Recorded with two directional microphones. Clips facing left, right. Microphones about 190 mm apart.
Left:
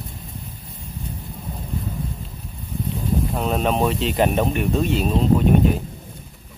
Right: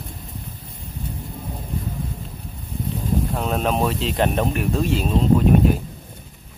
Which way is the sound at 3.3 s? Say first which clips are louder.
Left 2 dB; centre (ahead or behind).